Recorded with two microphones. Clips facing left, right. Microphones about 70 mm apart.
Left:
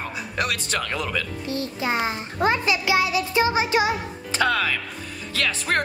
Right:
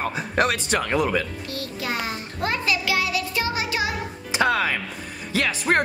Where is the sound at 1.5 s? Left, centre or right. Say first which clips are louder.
Left 6 dB; left.